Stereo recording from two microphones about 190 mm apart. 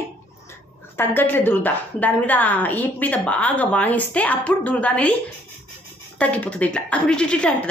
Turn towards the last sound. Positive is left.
turn(degrees=5)  # may be behind; listen again after turning